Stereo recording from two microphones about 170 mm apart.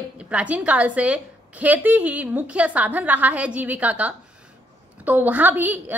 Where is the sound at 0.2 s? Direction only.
5° right (ahead or behind).